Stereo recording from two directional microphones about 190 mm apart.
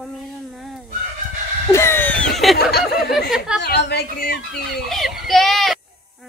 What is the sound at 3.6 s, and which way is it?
Speech, 60° left (ahead or behind).